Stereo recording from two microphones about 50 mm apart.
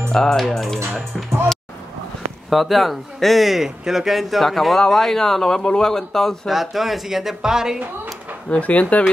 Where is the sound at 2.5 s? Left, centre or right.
Centre.